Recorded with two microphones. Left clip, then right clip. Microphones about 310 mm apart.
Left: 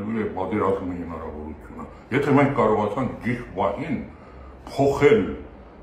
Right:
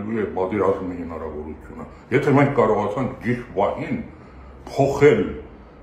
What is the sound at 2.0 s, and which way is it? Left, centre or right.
A man's voice, centre.